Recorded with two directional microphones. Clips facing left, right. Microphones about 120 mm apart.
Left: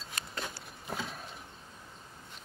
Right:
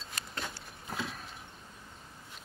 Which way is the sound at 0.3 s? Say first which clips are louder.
Even; centre (ahead or behind).